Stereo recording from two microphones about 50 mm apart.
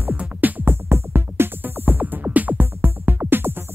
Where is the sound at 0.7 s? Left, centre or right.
Right.